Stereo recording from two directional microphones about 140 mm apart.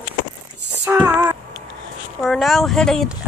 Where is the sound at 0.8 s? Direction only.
10° right (ahead or behind).